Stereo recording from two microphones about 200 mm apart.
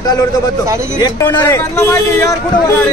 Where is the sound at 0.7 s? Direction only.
15° right (ahead or behind).